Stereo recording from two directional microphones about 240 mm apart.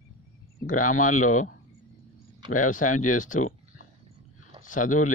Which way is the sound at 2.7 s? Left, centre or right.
Left.